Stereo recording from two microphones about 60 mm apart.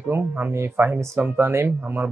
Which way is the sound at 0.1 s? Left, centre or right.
Right.